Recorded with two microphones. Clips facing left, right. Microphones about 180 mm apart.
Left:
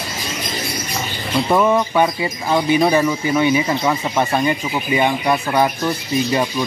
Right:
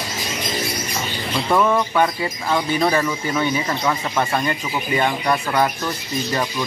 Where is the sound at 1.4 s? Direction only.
15° left (ahead or behind).